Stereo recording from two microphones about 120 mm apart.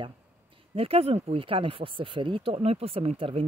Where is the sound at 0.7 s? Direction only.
55° right (ahead or behind).